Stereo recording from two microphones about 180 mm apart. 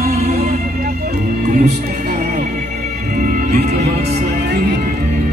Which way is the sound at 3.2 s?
45° right (ahead or behind).